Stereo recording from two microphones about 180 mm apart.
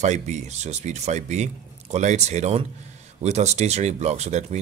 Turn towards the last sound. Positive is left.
turn(degrees=-40)  # may be behind; listen again after turning